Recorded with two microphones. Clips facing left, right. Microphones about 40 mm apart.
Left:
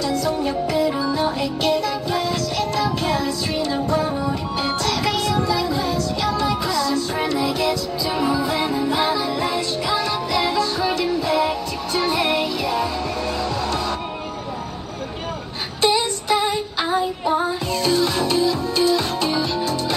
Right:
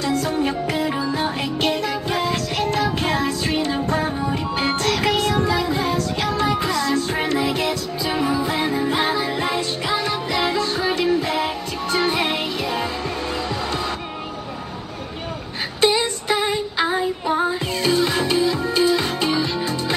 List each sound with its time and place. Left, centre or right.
0.0 s music: right
15.8 s music: centre
17.8 s music: right